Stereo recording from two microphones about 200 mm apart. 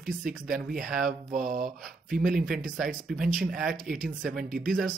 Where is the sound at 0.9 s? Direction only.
45° right (ahead or behind).